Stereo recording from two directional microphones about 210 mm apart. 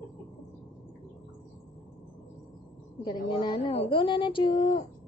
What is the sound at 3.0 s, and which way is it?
Speech, 20° left (ahead or behind).